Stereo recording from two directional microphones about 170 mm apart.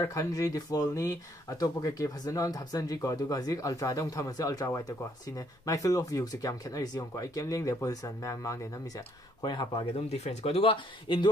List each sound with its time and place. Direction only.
0.0 s speech: 20° left (ahead or behind)